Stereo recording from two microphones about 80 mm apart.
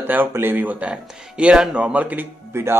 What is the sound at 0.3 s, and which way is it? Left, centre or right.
Speech, right.